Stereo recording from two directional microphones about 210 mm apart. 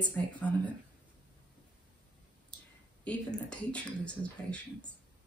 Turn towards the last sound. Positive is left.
turn(degrees=5)  # may be behind; listen again after turning